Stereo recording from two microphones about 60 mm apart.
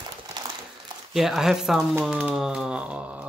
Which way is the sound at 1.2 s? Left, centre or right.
Centre.